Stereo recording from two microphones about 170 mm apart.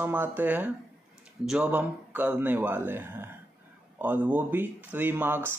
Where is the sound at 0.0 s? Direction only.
10° right (ahead or behind).